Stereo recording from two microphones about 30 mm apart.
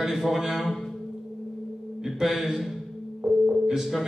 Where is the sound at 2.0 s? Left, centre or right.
Centre.